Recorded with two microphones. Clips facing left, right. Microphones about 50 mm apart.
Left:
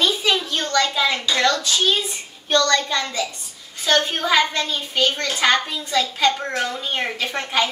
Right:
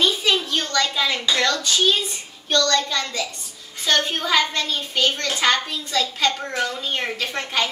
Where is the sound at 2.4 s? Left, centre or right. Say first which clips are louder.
Left 2 dB; left.